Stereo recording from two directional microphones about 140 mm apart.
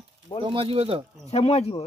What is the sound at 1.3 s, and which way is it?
Speech, 50° left (ahead or behind).